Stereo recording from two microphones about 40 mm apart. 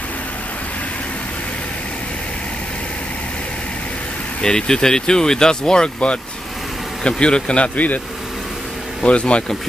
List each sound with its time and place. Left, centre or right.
4.4 s speech: centre
7.0 s speech: left
9.0 s speech: left